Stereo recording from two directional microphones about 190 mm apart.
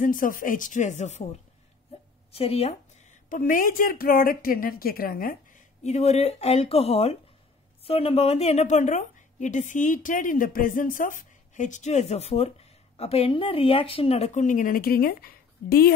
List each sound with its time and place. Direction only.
0.0 s a woman's voice: 45° left (ahead or behind)
2.3 s a woman's voice: 30° left (ahead or behind); by 15.9 s 55° left (ahead or behind)